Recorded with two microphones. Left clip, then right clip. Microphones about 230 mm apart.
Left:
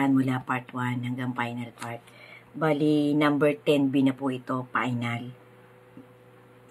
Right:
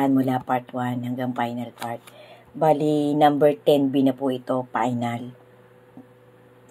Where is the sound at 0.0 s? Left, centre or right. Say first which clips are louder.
Right 4 dB; centre.